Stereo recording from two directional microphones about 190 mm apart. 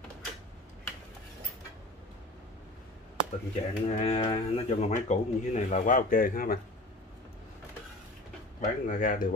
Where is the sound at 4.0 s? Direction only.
30° left (ahead or behind); by 6.6 s 50° left (ahead or behind).